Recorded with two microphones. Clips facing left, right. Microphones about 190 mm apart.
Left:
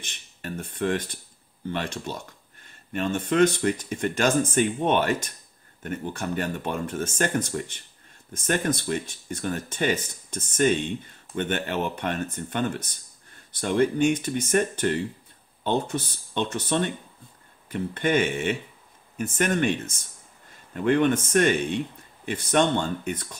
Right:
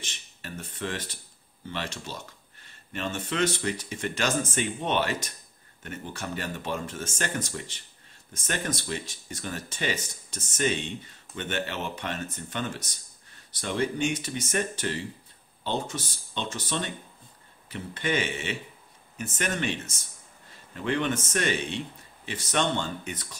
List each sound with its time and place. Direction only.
0.1 s speech: 55° left (ahead or behind)